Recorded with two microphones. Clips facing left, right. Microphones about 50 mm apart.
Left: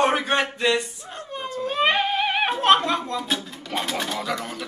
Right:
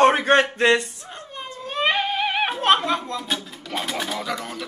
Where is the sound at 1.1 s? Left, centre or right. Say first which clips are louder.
Left 6 dB; centre.